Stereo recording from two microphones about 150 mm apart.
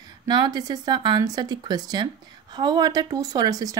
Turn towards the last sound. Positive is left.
turn(degrees=-25)  # may be behind; listen again after turning